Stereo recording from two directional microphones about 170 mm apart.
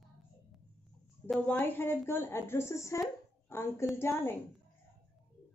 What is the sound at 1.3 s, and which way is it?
A woman's voice, 10° left (ahead or behind).